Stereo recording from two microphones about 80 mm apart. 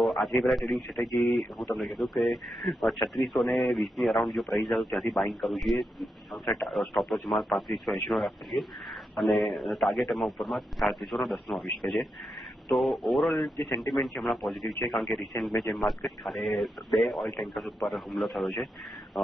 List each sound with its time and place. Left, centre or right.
0.0 s radio: centre
0.5 s speech: centre